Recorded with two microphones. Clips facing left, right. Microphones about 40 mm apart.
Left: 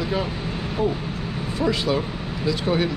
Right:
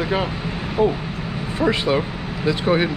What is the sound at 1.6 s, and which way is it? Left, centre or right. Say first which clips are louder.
Speech: right 3 dB; right.